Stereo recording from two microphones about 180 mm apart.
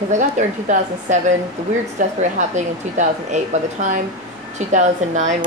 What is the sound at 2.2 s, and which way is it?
Speech, 40° right (ahead or behind).